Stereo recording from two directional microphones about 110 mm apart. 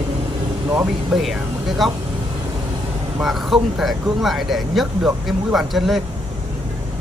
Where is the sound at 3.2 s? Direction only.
Centre (ahead or behind).